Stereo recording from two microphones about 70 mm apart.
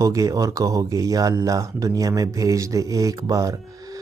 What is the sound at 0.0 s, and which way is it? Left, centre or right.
Speech, right.